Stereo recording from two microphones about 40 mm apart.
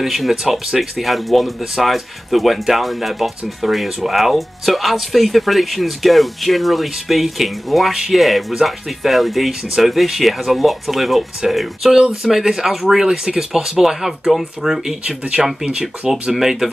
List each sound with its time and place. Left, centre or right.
0.0 s speech: centre
8.2 s speech: centre
9.5 s speech: centre
9.8 s speech: centre
15.0 s speech: right
16.0 s speech: centre